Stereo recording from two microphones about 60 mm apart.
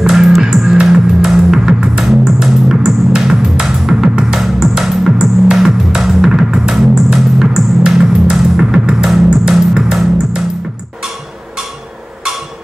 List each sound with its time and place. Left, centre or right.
0.1 s music: centre